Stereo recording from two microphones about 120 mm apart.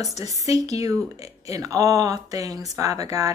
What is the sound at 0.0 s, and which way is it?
Speech, 30° right (ahead or behind).